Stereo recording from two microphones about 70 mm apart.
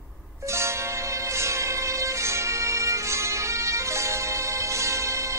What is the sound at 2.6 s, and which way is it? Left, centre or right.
Bagpipes, right.